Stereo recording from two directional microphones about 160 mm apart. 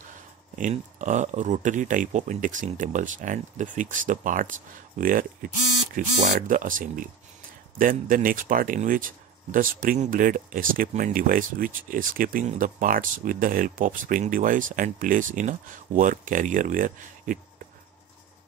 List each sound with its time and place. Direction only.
0.6 s speech: 50° right (ahead or behind)